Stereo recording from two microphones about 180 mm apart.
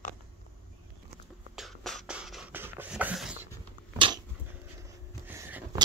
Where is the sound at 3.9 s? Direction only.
30° right (ahead or behind).